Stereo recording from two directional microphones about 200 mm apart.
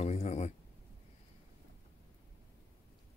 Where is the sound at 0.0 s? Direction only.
35° left (ahead or behind).